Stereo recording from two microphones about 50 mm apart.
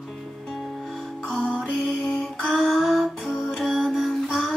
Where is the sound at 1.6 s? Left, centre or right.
Centre.